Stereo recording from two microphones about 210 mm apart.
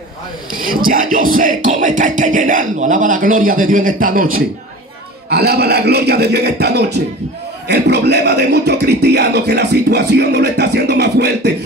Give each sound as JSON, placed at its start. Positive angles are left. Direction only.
{"t": 0.6, "sound": "speech", "side_deg": -40}